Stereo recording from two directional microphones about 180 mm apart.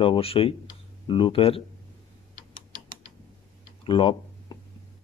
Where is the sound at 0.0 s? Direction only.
30° left (ahead or behind).